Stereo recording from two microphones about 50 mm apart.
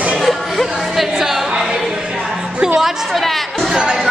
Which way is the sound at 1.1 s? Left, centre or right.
Centre.